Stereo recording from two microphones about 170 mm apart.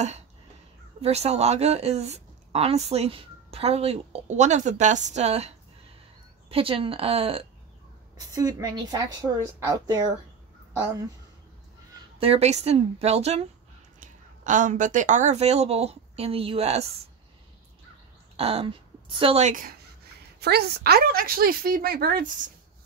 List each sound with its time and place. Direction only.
1.0 s a woman's voice: 40° right (ahead or behind)
6.5 s a woman's voice: 30° right (ahead or behind)
8.2 s a woman's voice: 20° right (ahead or behind)
12.2 s a woman's voice: 35° right (ahead or behind)
13.9 s a woman's voice: 50° right (ahead or behind)
18.3 s a woman's voice: 35° right (ahead or behind)
19.4 s speech: 50° right (ahead or behind)
20.3 s a woman's voice: 70° right (ahead or behind); by 22.5 s 55° right (ahead or behind)